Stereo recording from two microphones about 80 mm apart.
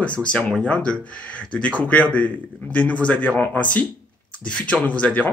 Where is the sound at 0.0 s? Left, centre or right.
Centre.